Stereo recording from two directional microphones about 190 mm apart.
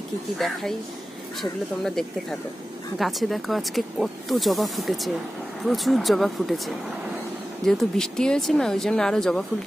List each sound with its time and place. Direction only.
0.4 s speech: centre (ahead or behind)